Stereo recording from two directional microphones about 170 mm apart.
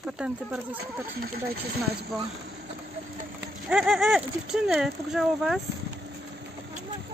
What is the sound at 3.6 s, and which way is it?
Speech, 5° right (ahead or behind).